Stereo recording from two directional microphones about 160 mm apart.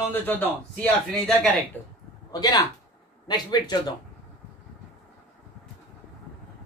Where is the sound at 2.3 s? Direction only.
25° left (ahead or behind).